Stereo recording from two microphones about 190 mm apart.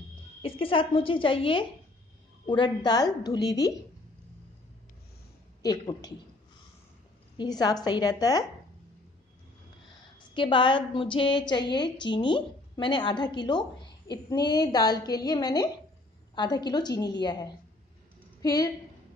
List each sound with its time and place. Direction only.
0.4 s a woman's voice: 30° left (ahead or behind)
5.6 s a woman's voice: 20° left (ahead or behind)
7.3 s a woman's voice: 20° left (ahead or behind)
10.3 s a woman's voice: 25° left (ahead or behind)